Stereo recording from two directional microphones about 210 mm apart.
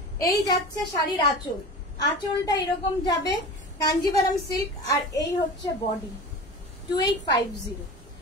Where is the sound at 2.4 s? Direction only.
20° left (ahead or behind).